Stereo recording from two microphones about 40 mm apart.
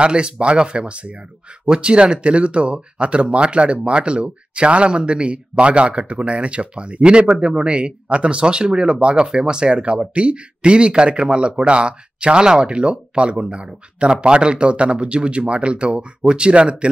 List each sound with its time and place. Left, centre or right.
0.0 s speech: right